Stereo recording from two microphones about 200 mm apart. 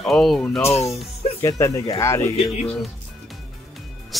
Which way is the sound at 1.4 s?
15° left (ahead or behind).